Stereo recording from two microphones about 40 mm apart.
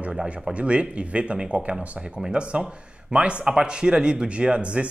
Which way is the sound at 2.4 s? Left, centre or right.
Right.